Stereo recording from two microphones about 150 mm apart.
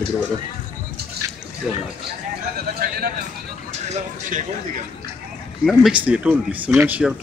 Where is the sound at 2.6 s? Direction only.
90° right.